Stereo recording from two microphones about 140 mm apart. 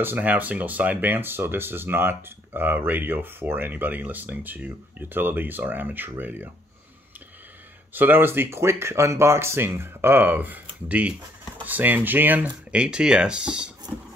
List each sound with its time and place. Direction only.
0.0 s speech: 15° right (ahead or behind)
7.9 s speech: 15° right (ahead or behind)